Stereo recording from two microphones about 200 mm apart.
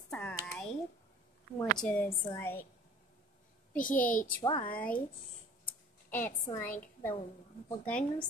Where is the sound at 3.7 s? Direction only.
40° left (ahead or behind).